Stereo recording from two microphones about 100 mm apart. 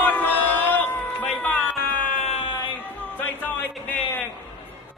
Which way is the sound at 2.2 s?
75° left (ahead or behind).